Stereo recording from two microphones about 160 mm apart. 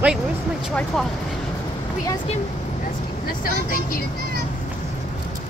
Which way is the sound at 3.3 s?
60° left (ahead or behind).